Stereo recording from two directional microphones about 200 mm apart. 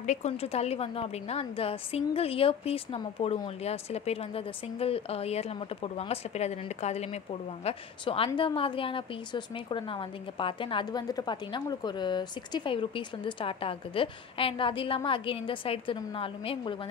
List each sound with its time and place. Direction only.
0.0 s a woman's voice: 35° left (ahead or behind)